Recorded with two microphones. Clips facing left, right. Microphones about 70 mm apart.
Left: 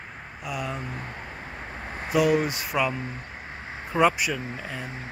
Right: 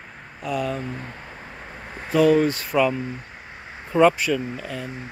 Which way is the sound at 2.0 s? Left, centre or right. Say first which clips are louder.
Right 5 dB; centre.